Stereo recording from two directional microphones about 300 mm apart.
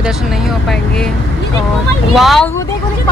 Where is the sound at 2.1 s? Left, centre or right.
Centre.